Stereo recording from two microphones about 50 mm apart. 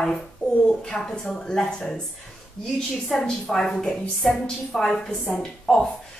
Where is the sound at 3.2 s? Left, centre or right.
Centre.